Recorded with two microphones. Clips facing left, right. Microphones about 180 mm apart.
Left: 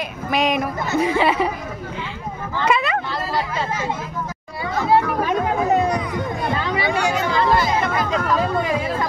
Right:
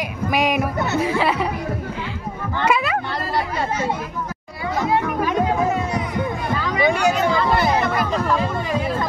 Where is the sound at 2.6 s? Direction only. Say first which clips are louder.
Even; 5° right (ahead or behind).